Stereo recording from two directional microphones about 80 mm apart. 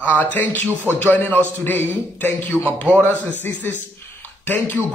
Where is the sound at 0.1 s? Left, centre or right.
Centre.